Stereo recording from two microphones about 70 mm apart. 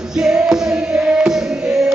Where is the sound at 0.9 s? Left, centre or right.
Centre.